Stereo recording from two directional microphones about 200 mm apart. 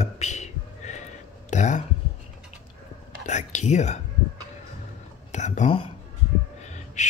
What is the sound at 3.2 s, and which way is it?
Speech, 35° left (ahead or behind).